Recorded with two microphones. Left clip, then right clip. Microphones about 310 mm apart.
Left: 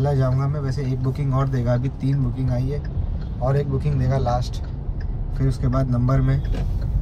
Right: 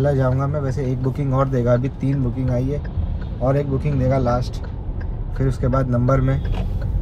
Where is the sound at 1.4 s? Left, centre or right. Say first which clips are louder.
Right 8 dB; centre.